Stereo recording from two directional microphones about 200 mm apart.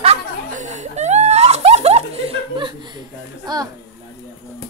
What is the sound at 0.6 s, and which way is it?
Laughter, 35° right (ahead or behind).